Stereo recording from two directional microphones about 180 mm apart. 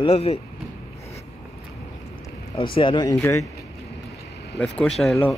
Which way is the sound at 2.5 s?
30° left (ahead or behind).